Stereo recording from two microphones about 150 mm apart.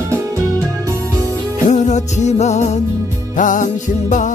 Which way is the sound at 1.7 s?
50° left (ahead or behind).